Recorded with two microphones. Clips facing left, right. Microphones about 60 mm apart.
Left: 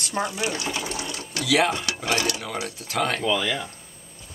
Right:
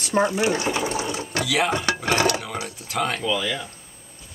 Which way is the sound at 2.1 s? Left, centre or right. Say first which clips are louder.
Right 4 dB; right.